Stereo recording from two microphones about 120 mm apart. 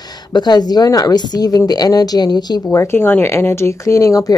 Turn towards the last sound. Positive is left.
turn(degrees=30)  # may be behind; listen again after turning